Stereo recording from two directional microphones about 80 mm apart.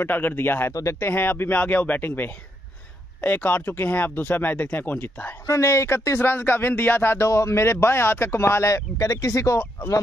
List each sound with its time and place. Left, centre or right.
0.0 s speech: left
5.5 s speech: left
7.2 s speech: left